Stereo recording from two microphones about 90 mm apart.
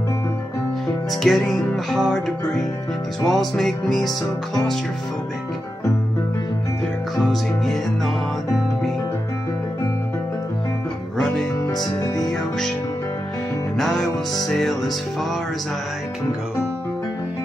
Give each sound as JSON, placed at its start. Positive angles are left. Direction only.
{"t": 1.2, "sound": "music", "side_deg": 5}
{"t": 7.2, "sound": "music", "side_deg": 0}
{"t": 11.1, "sound": "music", "side_deg": 5}
{"t": 11.7, "sound": "music", "side_deg": 50}
{"t": 12.3, "sound": "music", "side_deg": 5}
{"t": 13.7, "sound": "music", "side_deg": 5}